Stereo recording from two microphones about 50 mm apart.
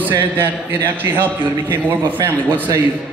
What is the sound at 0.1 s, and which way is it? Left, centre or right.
Speech, right.